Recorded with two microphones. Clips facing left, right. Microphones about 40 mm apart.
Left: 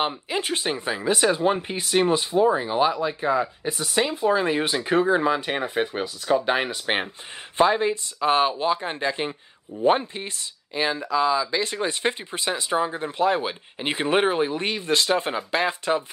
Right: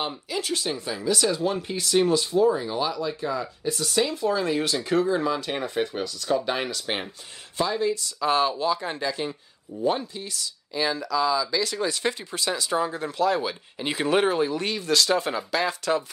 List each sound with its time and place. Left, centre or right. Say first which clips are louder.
0.0 s speech: left 4 dB; left